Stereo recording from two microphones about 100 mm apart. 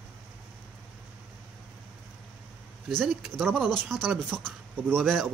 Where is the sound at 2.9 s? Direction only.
Centre (ahead or behind).